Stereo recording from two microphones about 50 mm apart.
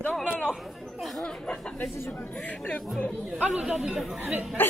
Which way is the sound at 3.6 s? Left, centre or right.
Centre.